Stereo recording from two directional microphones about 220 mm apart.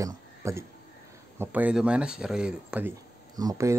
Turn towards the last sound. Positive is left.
turn(degrees=-15)  # may be behind; listen again after turning